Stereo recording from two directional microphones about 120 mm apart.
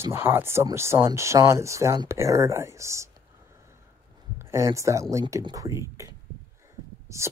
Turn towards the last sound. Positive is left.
turn(degrees=-25)  # may be behind; listen again after turning